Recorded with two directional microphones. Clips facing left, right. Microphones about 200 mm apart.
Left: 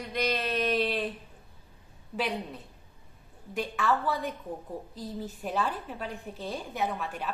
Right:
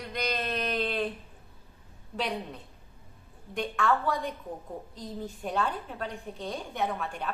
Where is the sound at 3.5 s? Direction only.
5° left (ahead or behind).